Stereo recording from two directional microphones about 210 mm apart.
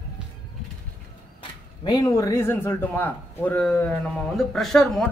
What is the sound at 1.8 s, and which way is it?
A man's voice, 15° left (ahead or behind).